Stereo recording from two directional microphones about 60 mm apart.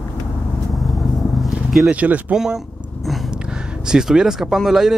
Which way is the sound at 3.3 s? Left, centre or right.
Centre.